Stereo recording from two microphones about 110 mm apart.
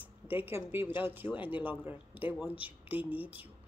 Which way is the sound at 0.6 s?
20° right (ahead or behind).